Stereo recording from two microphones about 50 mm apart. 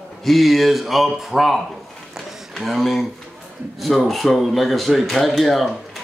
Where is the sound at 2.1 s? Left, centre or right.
Centre.